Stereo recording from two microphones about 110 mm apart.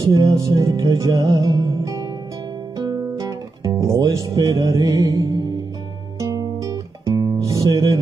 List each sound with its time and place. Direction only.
0.0 s music: 30° right (ahead or behind)
2.8 s guitar: 35° right (ahead or behind)
4.3 s music: 30° right (ahead or behind)